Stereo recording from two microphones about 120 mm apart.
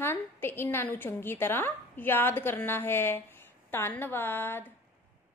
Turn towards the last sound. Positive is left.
turn(degrees=20)  # may be behind; listen again after turning